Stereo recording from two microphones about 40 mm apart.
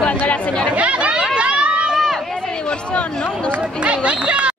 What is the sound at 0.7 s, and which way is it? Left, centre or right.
Speech, right.